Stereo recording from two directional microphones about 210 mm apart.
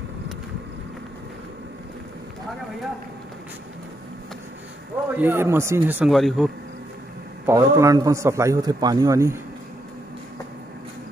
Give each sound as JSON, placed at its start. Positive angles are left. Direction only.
{"t": 5.1, "sound": "a man's voice", "side_deg": -10}
{"t": 7.4, "sound": "a man's voice", "side_deg": -15}